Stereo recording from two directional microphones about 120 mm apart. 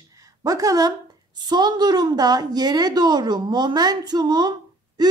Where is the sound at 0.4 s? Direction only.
30° right (ahead or behind).